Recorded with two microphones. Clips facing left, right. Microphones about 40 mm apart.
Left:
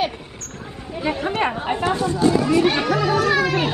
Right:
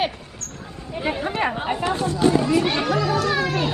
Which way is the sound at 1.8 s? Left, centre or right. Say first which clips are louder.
Left 2 dB; left.